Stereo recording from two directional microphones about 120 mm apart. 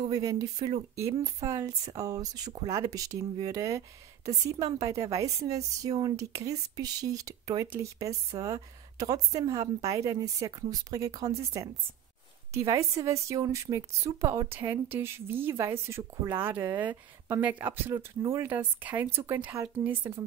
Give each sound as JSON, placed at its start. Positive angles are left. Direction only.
{"t": 0.0, "sound": "a woman's voice", "side_deg": -30}